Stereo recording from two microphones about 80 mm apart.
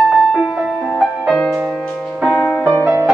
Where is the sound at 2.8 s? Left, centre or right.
Right.